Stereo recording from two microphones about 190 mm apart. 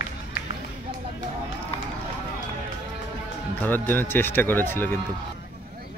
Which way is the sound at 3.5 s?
10° left (ahead or behind).